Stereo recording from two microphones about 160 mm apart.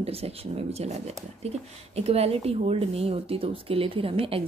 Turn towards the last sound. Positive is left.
turn(degrees=-35)  # may be behind; listen again after turning